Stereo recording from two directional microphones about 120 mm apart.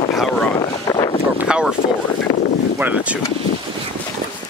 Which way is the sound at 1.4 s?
5° right (ahead or behind).